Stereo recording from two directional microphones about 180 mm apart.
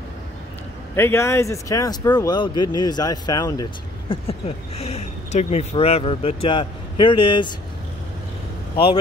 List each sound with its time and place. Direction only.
0.9 s speech: 15° left (ahead or behind)
4.1 s speech: 35° left (ahead or behind)